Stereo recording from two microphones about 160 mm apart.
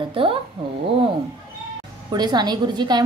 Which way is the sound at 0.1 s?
35° right (ahead or behind).